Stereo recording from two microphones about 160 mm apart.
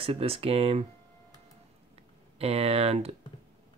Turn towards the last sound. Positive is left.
turn(degrees=-40)  # may be behind; listen again after turning